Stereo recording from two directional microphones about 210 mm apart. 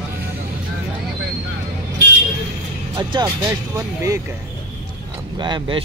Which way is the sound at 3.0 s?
20° right (ahead or behind).